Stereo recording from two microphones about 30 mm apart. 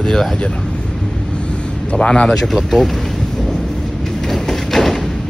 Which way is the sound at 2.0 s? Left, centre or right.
Left.